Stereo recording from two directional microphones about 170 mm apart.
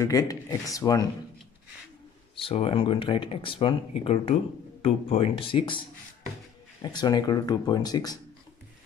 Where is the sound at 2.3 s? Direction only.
30° left (ahead or behind).